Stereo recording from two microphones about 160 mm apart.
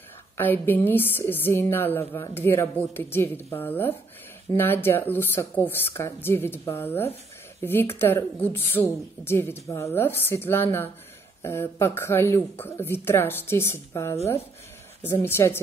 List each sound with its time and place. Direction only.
0.4 s speech: 15° left (ahead or behind)